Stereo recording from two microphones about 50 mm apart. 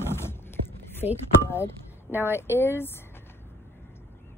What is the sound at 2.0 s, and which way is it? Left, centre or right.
Speech, right.